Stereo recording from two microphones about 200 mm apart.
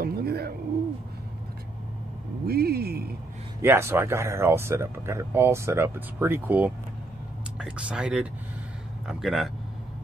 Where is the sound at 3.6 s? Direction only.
10° right (ahead or behind).